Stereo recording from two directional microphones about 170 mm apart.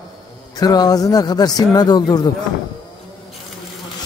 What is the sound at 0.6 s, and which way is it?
A man's voice, 20° left (ahead or behind).